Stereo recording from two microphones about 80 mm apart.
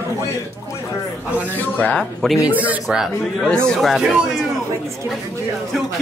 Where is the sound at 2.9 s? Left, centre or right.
Centre.